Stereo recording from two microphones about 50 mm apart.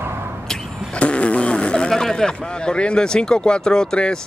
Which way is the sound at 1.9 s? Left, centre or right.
Centre.